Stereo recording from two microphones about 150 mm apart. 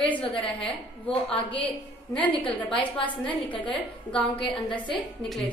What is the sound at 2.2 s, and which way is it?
Speech, 10° left (ahead or behind).